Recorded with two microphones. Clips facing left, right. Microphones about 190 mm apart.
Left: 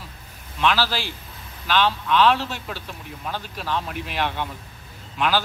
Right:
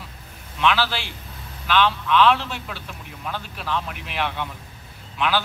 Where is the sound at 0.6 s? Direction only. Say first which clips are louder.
Even; 40° left (ahead or behind).